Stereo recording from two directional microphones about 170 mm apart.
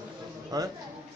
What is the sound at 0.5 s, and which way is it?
Speech, 25° right (ahead or behind).